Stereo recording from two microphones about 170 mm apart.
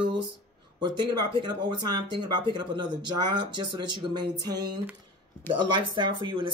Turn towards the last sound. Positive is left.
turn(degrees=-30)  # may be behind; listen again after turning